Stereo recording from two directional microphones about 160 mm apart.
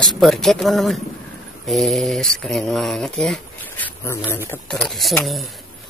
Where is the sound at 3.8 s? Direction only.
15° left (ahead or behind).